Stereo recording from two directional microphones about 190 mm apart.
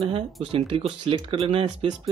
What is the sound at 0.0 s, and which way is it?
Speech, 30° right (ahead or behind).